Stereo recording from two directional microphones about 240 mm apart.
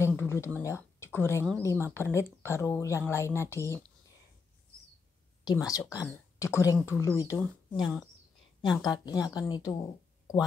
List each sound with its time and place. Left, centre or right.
0.0 s speech: centre
5.4 s speech: centre